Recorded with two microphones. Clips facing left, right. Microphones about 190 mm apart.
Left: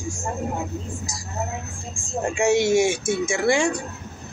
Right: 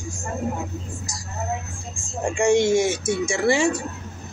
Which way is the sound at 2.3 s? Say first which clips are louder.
Right 1 dB; 5° left (ahead or behind).